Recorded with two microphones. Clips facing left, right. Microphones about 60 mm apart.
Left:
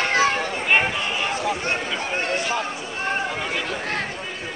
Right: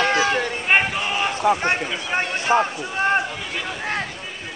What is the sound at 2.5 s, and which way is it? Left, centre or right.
Speech, right.